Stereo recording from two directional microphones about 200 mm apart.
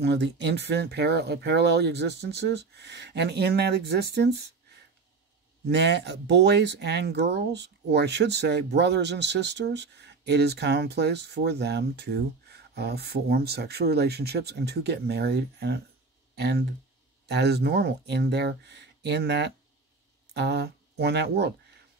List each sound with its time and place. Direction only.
0.0 s speech: 60° right (ahead or behind)
5.7 s speech: 60° right (ahead or behind)